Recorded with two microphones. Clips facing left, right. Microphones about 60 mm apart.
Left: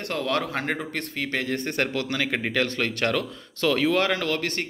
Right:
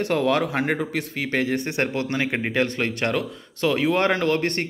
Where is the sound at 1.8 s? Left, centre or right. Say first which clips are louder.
Right 1 dB; right.